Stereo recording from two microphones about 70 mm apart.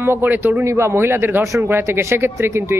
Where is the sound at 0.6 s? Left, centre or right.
Right.